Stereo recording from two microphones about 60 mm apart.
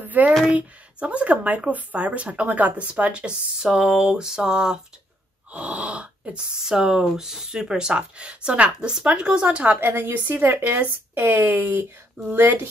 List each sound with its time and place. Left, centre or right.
0.0 s a sound: right
0.6 s speech: right
9.8 s speech: right